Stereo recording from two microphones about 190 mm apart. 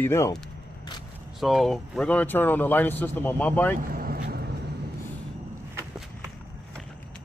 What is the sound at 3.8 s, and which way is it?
Vehicle, 50° right (ahead or behind).